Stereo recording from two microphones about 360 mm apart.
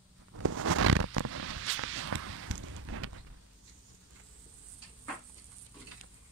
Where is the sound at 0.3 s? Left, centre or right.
Right.